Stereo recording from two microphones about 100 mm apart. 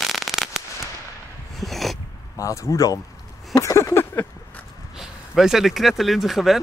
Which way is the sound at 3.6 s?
30° left (ahead or behind).